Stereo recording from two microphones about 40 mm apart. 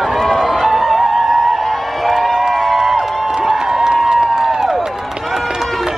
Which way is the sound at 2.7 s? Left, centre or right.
Centre.